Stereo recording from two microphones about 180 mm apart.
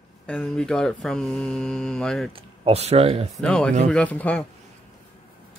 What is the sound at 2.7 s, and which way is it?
Speech, 35° right (ahead or behind).